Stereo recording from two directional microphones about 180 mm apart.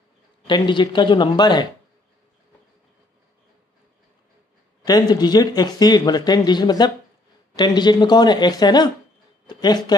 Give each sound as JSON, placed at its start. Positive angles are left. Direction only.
{"t": 0.5, "sound": "speech", "side_deg": 25}
{"t": 4.8, "sound": "speech", "side_deg": 20}